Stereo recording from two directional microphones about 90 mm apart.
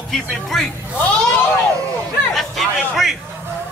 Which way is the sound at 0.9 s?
15° left (ahead or behind).